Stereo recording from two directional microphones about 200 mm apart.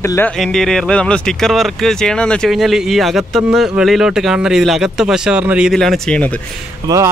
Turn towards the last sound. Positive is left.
turn(degrees=-15)  # may be behind; listen again after turning